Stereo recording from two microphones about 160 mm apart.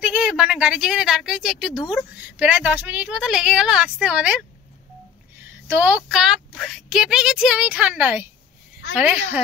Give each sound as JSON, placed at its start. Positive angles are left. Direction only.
{"t": 0.0, "sound": "a woman's voice", "side_deg": -5}
{"t": 5.7, "sound": "a woman's voice", "side_deg": -10}